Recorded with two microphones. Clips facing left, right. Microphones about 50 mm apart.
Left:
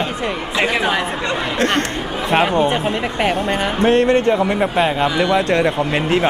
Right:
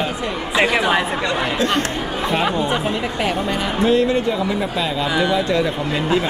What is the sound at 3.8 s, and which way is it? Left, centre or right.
Speech, left.